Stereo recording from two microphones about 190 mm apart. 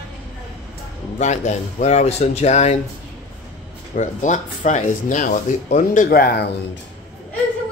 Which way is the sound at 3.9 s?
40° left (ahead or behind).